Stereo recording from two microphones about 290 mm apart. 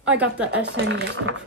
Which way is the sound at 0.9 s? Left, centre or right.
Right.